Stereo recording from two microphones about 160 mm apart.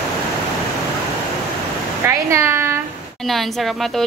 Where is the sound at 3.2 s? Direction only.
Centre (ahead or behind).